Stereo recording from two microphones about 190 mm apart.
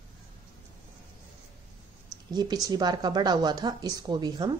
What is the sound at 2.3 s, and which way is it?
Speech, 20° right (ahead or behind).